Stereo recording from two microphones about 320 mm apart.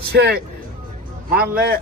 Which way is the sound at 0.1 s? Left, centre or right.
Right.